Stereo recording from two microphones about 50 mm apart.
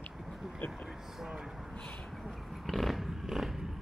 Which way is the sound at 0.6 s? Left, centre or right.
Left.